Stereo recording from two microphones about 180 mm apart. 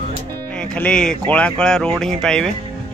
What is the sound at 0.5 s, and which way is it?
Speech, 5° left (ahead or behind).